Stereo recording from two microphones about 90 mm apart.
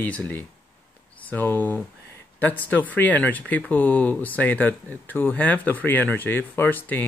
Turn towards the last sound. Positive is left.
turn(degrees=20)  # may be behind; listen again after turning